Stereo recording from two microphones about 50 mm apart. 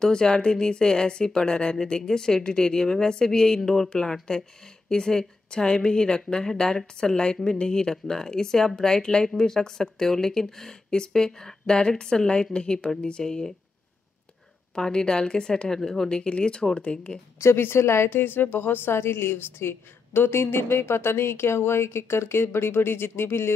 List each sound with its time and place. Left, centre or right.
0.0 s speech: centre
14.8 s speech: centre
16.1 s speech: centre
17.4 s a woman's voice: left
18.2 s a woman's voice: left